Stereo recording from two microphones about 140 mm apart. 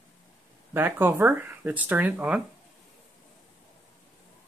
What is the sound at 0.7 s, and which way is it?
Speech, 15° right (ahead or behind).